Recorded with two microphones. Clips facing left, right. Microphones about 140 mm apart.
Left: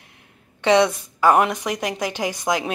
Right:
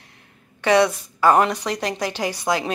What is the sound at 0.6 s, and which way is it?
Speech, 20° left (ahead or behind).